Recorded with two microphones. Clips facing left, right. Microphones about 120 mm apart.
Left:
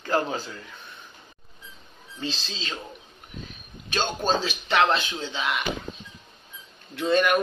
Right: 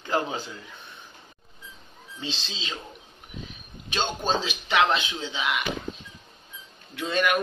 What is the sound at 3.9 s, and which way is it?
Speech, 15° right (ahead or behind).